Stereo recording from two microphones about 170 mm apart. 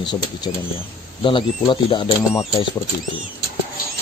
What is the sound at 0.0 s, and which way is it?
Speech, 25° left (ahead or behind).